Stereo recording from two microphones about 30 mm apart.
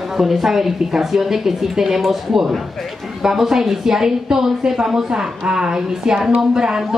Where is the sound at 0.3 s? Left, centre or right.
Centre.